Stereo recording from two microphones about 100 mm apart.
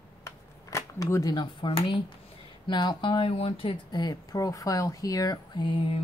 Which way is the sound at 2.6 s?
50° left (ahead or behind).